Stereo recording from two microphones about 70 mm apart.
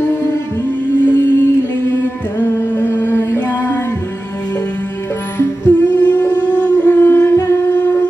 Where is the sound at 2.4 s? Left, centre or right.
Left.